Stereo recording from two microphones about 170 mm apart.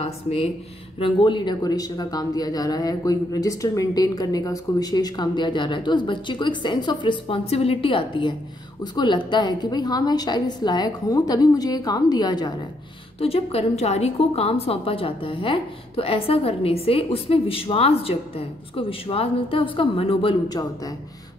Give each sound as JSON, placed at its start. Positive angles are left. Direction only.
{"t": 0.0, "sound": "a woman's voice", "side_deg": 35}
{"t": 13.2, "sound": "a woman's voice", "side_deg": 35}
{"t": 20.4, "sound": "speech", "side_deg": 20}